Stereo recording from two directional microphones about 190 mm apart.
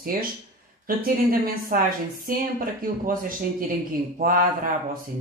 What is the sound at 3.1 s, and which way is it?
Speech, 50° right (ahead or behind).